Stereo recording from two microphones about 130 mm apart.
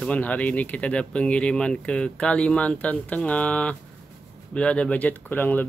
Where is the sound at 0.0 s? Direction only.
10° left (ahead or behind).